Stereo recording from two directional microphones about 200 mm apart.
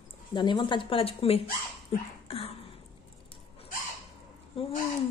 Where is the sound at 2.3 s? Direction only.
30° left (ahead or behind).